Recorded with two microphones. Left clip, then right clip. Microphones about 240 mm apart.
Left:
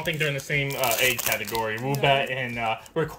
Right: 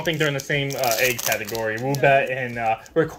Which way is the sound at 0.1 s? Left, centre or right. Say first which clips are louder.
Right 3 dB; centre.